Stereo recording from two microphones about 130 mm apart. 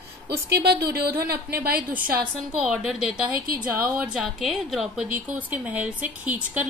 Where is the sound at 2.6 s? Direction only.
Centre (ahead or behind).